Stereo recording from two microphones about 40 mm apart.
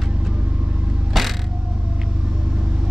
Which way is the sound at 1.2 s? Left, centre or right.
Centre.